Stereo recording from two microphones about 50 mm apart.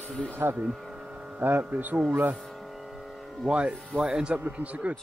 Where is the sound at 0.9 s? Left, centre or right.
Centre.